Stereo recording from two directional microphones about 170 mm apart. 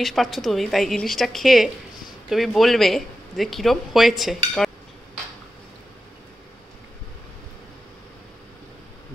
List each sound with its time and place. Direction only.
0.0 s speech: centre (ahead or behind)